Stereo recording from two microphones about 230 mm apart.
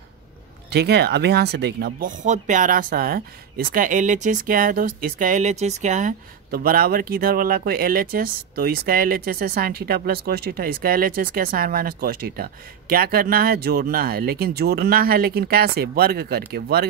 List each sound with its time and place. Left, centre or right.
0.7 s speech: right